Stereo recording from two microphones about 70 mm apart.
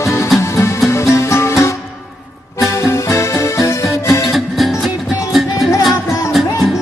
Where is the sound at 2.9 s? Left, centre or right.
Left.